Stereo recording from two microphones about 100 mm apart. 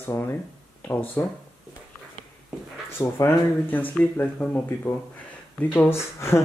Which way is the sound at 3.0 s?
30° left (ahead or behind).